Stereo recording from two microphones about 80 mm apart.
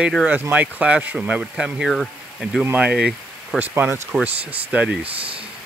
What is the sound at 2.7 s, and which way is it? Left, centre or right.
Speech, centre.